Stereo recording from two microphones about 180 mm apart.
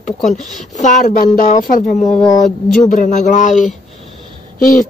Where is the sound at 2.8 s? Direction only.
45° left (ahead or behind).